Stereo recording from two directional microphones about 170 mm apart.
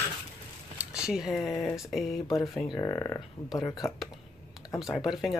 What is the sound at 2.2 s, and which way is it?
Speech, 20° left (ahead or behind).